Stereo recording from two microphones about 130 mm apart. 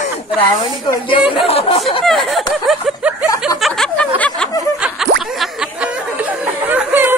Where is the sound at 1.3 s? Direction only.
45° left (ahead or behind).